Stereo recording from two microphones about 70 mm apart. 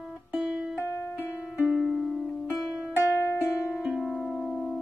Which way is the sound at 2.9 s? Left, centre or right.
Left.